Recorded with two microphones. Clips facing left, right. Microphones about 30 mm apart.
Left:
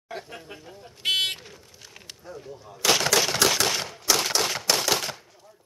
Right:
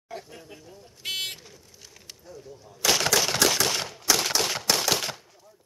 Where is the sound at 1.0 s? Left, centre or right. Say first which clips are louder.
Left 7 dB; left.